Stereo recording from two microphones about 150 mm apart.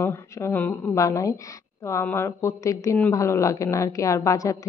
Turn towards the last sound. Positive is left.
turn(degrees=20)  # may be behind; listen again after turning